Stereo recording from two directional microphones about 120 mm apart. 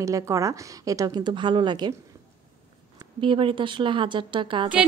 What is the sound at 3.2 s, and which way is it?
A woman's voice, 45° right (ahead or behind).